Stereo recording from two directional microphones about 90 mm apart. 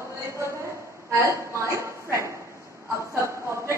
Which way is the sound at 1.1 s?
35° right (ahead or behind).